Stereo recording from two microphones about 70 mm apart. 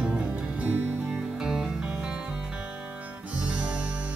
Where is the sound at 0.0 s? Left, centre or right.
Centre.